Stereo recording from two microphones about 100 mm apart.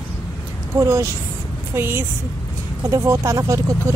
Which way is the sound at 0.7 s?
30° right (ahead or behind).